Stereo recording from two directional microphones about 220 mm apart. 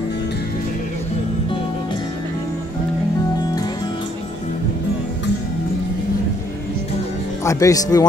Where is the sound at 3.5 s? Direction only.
20° left (ahead or behind).